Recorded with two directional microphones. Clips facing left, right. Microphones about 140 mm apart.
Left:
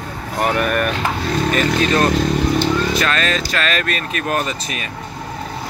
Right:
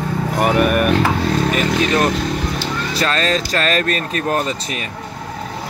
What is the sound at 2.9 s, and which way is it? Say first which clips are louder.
Speech: right 1 dB; 30° right (ahead or behind).